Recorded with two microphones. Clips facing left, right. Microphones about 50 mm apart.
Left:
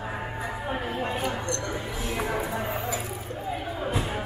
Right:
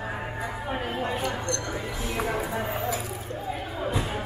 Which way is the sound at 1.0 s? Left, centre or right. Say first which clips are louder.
Even; centre.